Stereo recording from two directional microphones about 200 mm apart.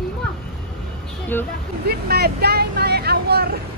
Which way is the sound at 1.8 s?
50° right (ahead or behind).